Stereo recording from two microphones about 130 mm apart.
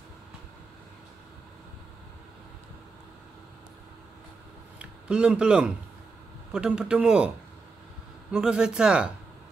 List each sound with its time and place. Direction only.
4.7 s speech: 10° right (ahead or behind)